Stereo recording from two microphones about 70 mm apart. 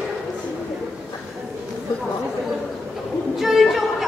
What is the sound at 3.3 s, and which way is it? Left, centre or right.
Music, centre.